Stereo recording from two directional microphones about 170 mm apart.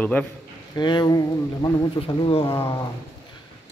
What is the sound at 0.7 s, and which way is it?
Speech, 25° left (ahead or behind).